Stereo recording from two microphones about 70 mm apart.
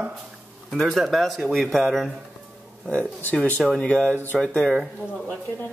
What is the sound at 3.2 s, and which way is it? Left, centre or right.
Speech, left.